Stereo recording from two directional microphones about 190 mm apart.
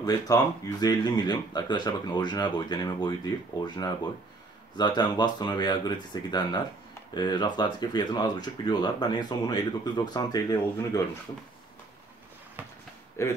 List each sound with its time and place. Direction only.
0.0 s speech: 20° left (ahead or behind)
13.2 s speech: 15° left (ahead or behind)